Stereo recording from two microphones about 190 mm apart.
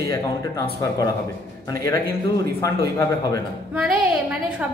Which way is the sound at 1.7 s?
15° left (ahead or behind).